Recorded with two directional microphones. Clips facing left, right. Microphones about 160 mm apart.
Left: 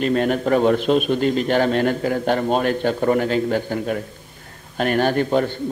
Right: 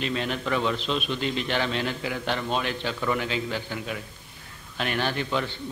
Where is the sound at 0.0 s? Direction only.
50° left (ahead or behind).